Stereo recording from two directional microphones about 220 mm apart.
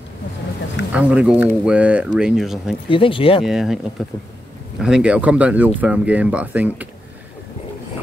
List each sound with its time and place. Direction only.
0.9 s speech: 5° right (ahead or behind)
2.9 s speech: 25° left (ahead or behind)
3.4 s speech: centre (ahead or behind)